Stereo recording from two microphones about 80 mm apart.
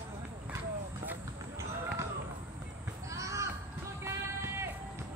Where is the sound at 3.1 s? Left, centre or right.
Right.